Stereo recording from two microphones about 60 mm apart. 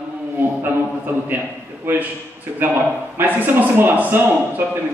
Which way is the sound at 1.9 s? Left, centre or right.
Right.